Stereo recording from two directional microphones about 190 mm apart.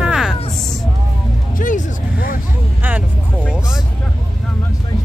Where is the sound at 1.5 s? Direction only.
45° left (ahead or behind).